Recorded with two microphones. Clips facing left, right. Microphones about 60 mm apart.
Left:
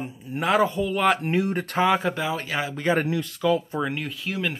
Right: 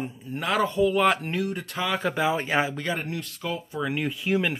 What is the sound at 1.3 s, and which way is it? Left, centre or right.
Speech, left.